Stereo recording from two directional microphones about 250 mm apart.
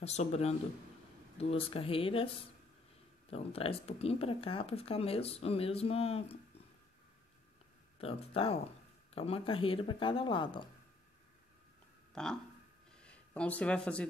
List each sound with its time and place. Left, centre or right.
0.0 s speech: left
8.0 s speech: left
12.1 s speech: centre
12.9 s a sound: centre